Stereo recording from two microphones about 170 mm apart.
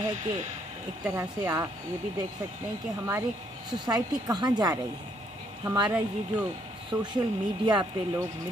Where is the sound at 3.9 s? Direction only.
20° right (ahead or behind).